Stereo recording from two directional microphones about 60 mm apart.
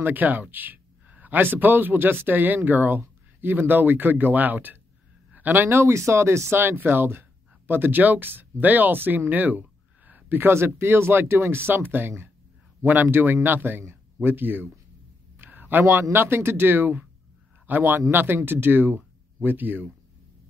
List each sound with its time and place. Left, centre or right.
0.0 s speech: right
6.6 s speech: right
15.3 s a sound: right
15.8 s speech: right